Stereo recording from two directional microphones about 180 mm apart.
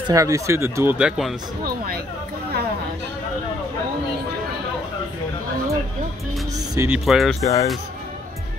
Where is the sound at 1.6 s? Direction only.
55° right (ahead or behind).